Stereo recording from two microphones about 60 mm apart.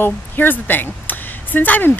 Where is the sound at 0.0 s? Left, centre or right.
Left.